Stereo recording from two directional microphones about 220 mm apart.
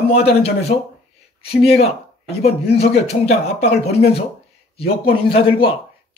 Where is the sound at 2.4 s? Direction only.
30° left (ahead or behind).